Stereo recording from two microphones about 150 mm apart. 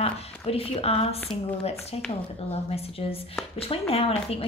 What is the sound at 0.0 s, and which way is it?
A woman's voice, 40° left (ahead or behind).